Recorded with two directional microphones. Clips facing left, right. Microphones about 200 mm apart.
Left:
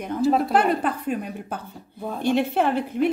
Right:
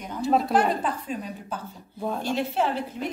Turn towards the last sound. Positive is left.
turn(degrees=60)  # may be behind; listen again after turning